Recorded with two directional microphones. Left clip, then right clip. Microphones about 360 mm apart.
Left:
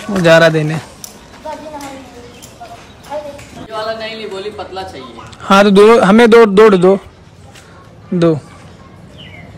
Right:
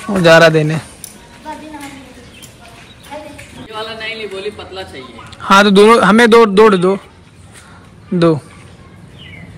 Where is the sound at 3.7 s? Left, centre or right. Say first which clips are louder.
Left 3 dB; centre.